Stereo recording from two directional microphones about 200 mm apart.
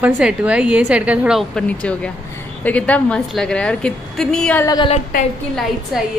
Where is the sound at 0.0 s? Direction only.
5° right (ahead or behind).